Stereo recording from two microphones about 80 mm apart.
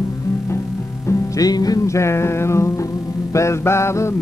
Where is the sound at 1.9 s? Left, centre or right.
Left.